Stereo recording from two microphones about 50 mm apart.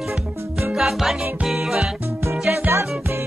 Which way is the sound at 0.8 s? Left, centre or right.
Centre.